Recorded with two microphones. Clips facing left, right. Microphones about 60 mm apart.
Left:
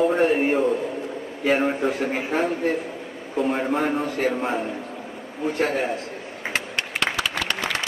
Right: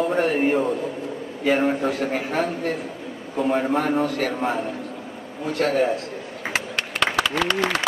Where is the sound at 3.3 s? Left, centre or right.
Centre.